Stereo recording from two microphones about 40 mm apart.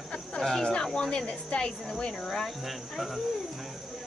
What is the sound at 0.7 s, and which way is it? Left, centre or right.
Speech, left.